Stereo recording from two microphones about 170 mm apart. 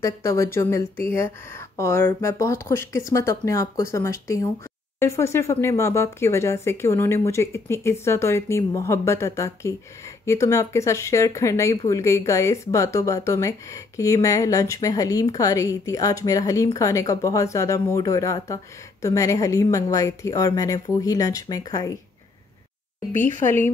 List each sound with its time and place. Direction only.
0.0 s speech: 20° left (ahead or behind)